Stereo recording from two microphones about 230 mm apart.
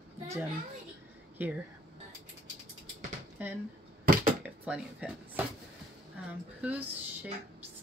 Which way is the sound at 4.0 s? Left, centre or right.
Right.